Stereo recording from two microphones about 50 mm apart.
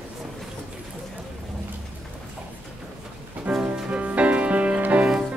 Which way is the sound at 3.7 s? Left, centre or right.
Right.